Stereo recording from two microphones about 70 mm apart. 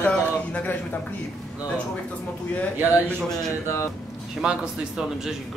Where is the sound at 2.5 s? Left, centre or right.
Centre.